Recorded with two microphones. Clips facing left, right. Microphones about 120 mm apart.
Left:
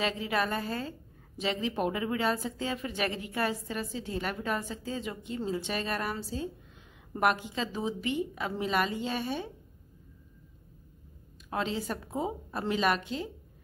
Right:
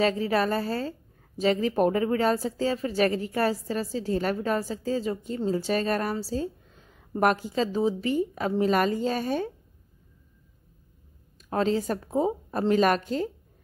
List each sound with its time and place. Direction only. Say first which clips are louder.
0.0 s speech: right 6 dB; 40° right (ahead or behind)
11.5 s a woman's voice: right 7 dB; 40° right (ahead or behind)